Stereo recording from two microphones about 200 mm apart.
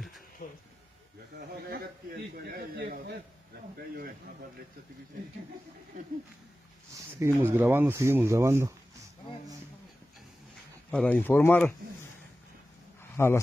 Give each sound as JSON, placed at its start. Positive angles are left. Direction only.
{"t": 0.4, "sound": "speech", "side_deg": 45}
{"t": 2.3, "sound": "speech", "side_deg": -50}
{"t": 6.9, "sound": "speech", "side_deg": -15}
{"t": 10.9, "sound": "speech", "side_deg": 5}
{"t": 13.1, "sound": "speech", "side_deg": 10}